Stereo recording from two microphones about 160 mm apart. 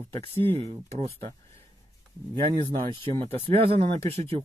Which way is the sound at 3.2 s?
35° right (ahead or behind).